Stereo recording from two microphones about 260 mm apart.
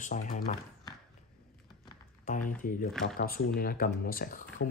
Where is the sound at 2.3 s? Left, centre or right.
Left.